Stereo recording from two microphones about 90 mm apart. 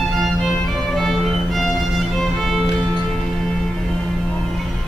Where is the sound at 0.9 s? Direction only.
Centre (ahead or behind).